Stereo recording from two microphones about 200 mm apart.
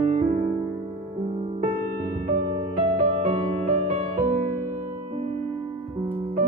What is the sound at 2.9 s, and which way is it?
Music, 35° right (ahead or behind).